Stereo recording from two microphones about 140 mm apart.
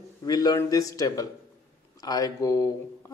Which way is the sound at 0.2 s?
25° left (ahead or behind).